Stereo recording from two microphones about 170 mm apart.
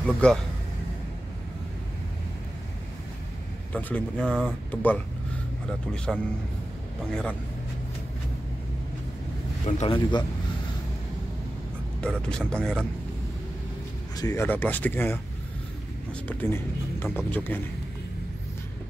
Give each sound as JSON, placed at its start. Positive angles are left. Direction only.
{"t": 0.0, "sound": "speech", "side_deg": 5}
{"t": 3.7, "sound": "speech", "side_deg": 5}
{"t": 9.8, "sound": "speech", "side_deg": 30}
{"t": 12.0, "sound": "speech", "side_deg": 5}
{"t": 14.1, "sound": "speech", "side_deg": 20}
{"t": 16.3, "sound": "speech", "side_deg": 10}